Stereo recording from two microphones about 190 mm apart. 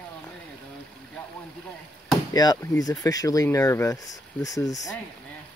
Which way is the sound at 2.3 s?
15° left (ahead or behind).